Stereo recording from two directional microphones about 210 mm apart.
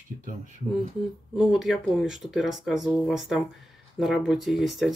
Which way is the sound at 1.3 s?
5° right (ahead or behind).